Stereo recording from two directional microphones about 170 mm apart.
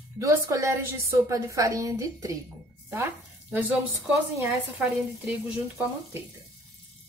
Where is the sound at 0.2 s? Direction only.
20° right (ahead or behind).